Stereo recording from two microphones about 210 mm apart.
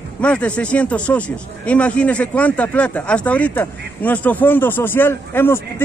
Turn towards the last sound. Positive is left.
turn(degrees=10)  # may be behind; listen again after turning